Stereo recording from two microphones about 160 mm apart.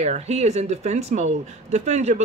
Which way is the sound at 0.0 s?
45° right (ahead or behind).